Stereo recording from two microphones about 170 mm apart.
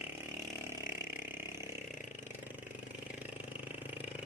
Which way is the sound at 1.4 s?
15° right (ahead or behind).